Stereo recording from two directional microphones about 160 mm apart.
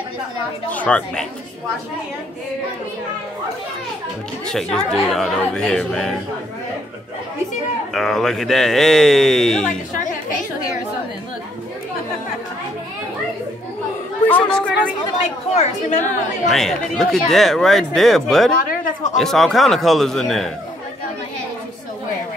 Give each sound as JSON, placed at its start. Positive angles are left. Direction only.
{"t": 0.7, "sound": "a woman's voice", "side_deg": 10}
{"t": 4.5, "sound": "speech", "side_deg": 5}
{"t": 7.9, "sound": "speech", "side_deg": 5}
{"t": 9.7, "sound": "a woman's voice", "side_deg": 55}
{"t": 14.2, "sound": "a woman's voice", "side_deg": 10}
{"t": 15.5, "sound": "a woman's voice", "side_deg": 45}
{"t": 16.4, "sound": "speech", "side_deg": 0}
{"t": 18.6, "sound": "speech", "side_deg": 60}
{"t": 19.1, "sound": "speech", "side_deg": 0}